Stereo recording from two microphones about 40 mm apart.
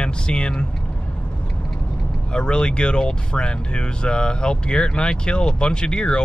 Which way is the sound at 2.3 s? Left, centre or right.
Left.